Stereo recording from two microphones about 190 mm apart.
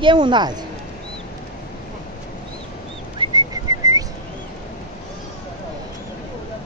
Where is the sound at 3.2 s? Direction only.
20° right (ahead or behind).